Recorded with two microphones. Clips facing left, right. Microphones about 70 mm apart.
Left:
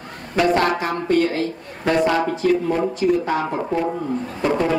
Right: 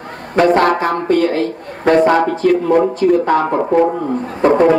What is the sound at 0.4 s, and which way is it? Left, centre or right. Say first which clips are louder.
A man's voice: right 6 dB; right.